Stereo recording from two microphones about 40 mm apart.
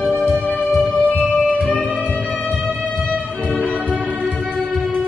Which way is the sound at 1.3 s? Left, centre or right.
Left.